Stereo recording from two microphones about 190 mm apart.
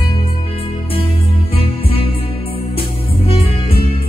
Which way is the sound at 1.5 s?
30° left (ahead or behind).